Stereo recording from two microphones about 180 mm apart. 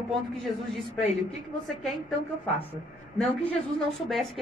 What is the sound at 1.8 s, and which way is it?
A woman's voice, centre (ahead or behind).